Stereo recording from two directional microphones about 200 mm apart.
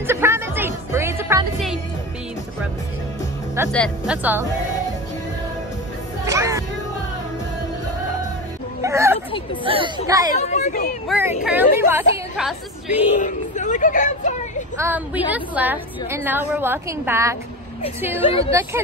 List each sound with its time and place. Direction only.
0.0 s music: 10° right (ahead or behind)
3.7 s a woman's voice: centre (ahead or behind)
6.2 s music: 15° right (ahead or behind)
8.8 s a sound: 15° right (ahead or behind)
10.0 s a woman's voice: 15° right (ahead or behind)
10.3 s speech: 35° left (ahead or behind)
11.1 s a woman's voice: 10° right (ahead or behind)
13.2 s a sound: 40° left (ahead or behind)
14.8 s a woman's voice: 10° right (ahead or behind)
18.2 s a woman's voice: 25° left (ahead or behind)
18.5 s a woman's voice: 15° right (ahead or behind)